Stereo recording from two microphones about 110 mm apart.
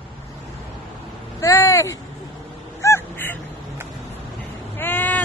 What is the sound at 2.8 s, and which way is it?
Crow, 20° left (ahead or behind).